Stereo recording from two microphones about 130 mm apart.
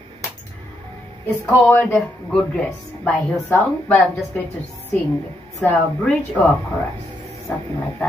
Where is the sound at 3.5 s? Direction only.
20° left (ahead or behind).